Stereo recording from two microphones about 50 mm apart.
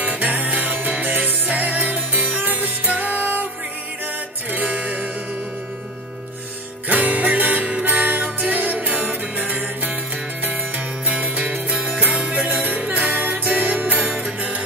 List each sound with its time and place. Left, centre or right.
0.0 s music: right
4.5 s music: right
6.9 s music: right
11.1 s music: right
14.1 s music: right